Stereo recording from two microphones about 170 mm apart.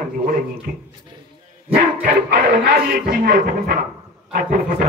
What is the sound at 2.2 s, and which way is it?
Speech, 65° right (ahead or behind).